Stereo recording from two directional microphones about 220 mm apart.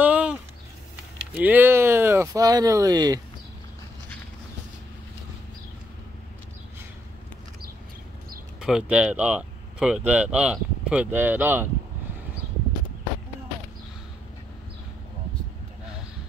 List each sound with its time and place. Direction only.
0.0 s a sound: 5° right (ahead or behind)
1.3 s speech: 10° right (ahead or behind)
8.5 s speech: 5° right (ahead or behind)